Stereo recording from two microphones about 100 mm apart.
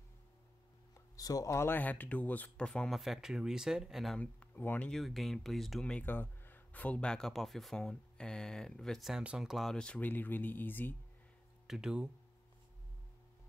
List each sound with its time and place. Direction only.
0.9 s speech: 35° left (ahead or behind); by 4.2 s centre (ahead or behind)
4.2 s speech: 15° left (ahead or behind)
4.9 s speech: centre (ahead or behind)
6.0 s speech: 20° left (ahead or behind)
11.6 s speech: 5° right (ahead or behind)